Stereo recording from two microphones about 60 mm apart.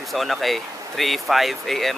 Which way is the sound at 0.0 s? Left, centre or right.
Centre.